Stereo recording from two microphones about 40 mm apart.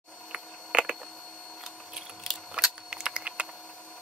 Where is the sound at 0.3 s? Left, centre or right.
Right.